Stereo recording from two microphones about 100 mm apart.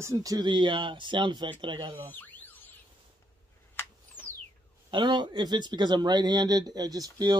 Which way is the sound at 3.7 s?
20° left (ahead or behind).